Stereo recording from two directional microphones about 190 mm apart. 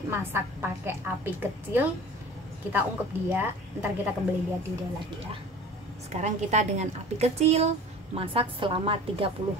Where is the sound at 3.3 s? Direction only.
10° right (ahead or behind).